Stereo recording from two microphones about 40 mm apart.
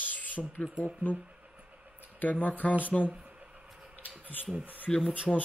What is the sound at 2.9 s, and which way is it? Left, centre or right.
Speech, centre.